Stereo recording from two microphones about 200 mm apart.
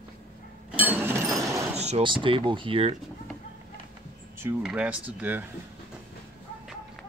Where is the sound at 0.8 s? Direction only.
10° right (ahead or behind).